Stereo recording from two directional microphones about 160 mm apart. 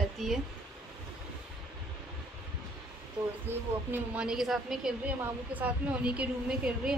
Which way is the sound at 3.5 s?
15° right (ahead or behind).